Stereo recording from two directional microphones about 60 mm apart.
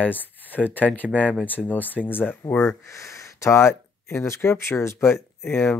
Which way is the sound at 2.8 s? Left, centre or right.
Left.